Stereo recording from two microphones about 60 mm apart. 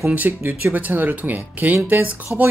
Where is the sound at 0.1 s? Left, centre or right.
Right.